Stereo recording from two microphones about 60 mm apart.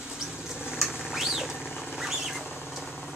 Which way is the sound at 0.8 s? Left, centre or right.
Centre.